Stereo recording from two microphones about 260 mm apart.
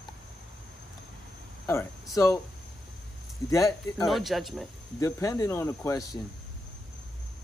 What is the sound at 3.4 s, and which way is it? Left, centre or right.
Speech, centre.